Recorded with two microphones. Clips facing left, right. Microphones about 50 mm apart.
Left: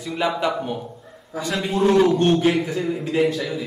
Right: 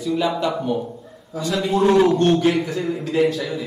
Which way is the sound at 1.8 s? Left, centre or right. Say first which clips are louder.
Right 1 dB; centre.